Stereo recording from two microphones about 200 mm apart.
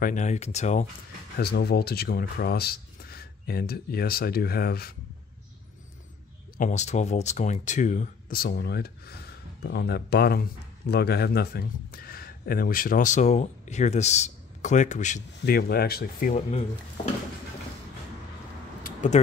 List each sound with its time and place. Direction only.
0.0 s speech: 35° left (ahead or behind)
1.4 s speech: 50° left (ahead or behind)
6.6 s speech: 35° left (ahead or behind)
15.4 s speech: 50° left (ahead or behind)
16.3 s speech: 30° left (ahead or behind)
18.8 s a sound: 40° left (ahead or behind)